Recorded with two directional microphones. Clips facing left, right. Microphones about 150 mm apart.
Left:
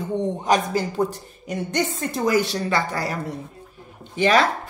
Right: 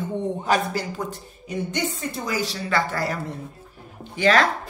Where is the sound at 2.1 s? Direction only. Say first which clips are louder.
Left 7 dB; 60° left (ahead or behind).